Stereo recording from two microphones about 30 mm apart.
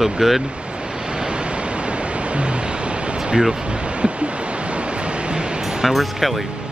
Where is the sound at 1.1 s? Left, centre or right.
Right.